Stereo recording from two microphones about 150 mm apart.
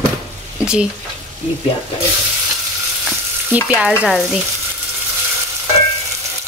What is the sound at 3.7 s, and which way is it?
Stir, 5° right (ahead or behind).